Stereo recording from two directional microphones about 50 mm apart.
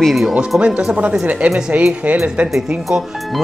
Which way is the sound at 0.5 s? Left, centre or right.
Right.